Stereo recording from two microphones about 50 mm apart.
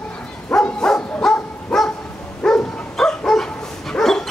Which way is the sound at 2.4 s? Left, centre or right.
Centre.